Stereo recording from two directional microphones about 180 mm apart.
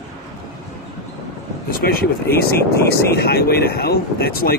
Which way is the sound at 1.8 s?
60° left (ahead or behind).